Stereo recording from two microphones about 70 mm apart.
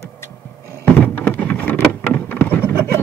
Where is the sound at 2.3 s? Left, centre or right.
Left.